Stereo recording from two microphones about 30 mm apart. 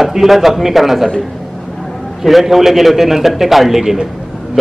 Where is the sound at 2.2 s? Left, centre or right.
Centre.